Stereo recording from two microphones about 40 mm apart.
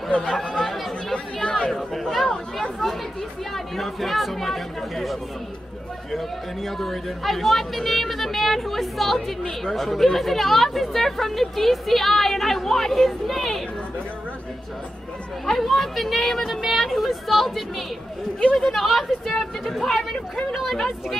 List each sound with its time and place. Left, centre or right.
0.2 s speech: centre
0.6 s chatter: centre
1.1 s chatter: left
1.7 s chatter: centre
3.5 s speech: centre
6.1 s speech: centre
15.4 s speech: centre